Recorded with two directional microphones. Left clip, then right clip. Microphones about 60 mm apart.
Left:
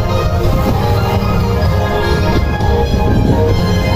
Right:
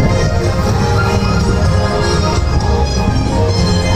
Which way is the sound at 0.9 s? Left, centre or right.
Right.